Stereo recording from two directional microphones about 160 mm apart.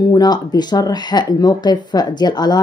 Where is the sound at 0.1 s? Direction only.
25° left (ahead or behind).